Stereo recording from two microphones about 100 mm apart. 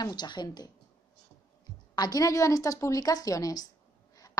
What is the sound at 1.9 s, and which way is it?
A woman's voice, 40° left (ahead or behind).